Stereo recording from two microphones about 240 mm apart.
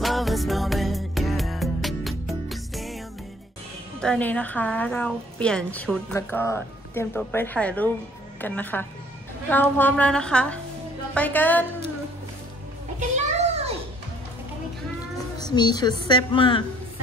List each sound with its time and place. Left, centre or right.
0.0 s music: centre
4.0 s a woman's voice: centre
13.1 s a sound: right
15.5 s a woman's voice: centre